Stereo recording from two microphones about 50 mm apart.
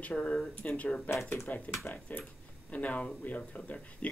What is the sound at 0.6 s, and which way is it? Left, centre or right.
Speech, left.